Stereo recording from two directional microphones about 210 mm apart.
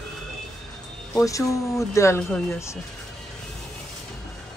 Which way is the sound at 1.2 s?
15° left (ahead or behind).